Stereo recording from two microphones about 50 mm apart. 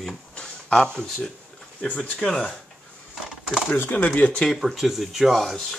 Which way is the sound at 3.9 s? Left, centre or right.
Left.